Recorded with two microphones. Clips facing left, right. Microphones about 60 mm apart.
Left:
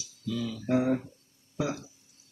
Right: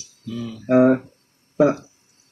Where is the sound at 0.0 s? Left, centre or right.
Right.